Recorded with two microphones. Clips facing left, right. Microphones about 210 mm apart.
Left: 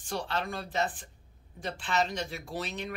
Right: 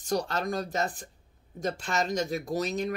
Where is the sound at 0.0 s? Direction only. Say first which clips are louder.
Right 5 dB; 40° right (ahead or behind).